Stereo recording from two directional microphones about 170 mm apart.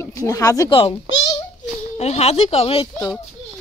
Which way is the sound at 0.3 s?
20° left (ahead or behind).